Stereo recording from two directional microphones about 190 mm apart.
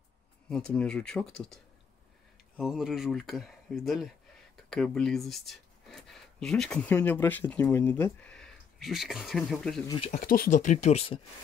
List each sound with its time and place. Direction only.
0.5 s speech: 5° left (ahead or behind)
9.8 s speech: 30° left (ahead or behind)
10.2 s speech: 50° left (ahead or behind); by 11.1 s 35° left (ahead or behind)